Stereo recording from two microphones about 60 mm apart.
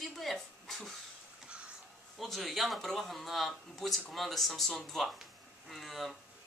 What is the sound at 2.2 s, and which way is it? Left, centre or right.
Speech, centre.